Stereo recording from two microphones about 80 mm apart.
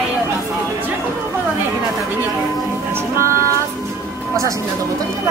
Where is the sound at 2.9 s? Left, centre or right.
Right.